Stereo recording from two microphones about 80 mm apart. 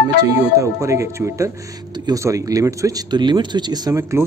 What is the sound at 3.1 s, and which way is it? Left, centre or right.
Speech, right.